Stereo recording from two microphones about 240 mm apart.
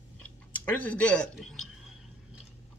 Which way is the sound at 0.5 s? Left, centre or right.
Centre.